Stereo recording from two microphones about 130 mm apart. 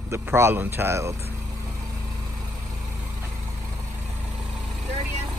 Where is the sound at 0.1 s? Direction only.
20° right (ahead or behind).